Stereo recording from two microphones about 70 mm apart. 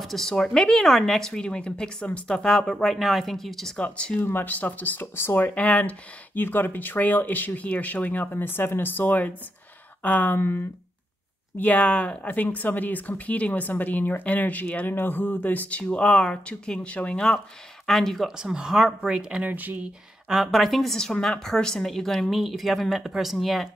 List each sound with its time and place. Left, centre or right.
0.0 s speech: centre
3.7 s speech: centre
4.2 s speech: left
5.5 s speech: centre
11.5 s speech: left
17.8 s a woman's voice: centre
18.4 s speech: centre
19.5 s speech: right
20.2 s a woman's voice: centre